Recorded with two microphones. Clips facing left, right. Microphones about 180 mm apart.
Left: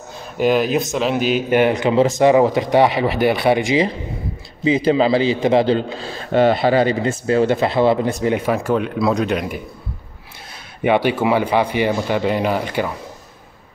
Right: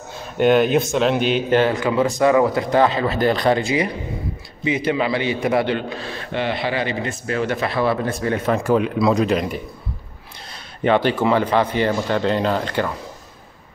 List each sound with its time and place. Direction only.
0.4 s a man's voice: centre (ahead or behind)
1.6 s a man's voice: 20° left (ahead or behind)
6.3 s a man's voice: 40° left (ahead or behind); by 9.6 s centre (ahead or behind)
10.8 s speech: 10° left (ahead or behind)